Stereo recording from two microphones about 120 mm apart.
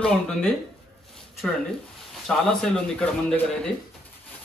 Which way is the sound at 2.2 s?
5° left (ahead or behind).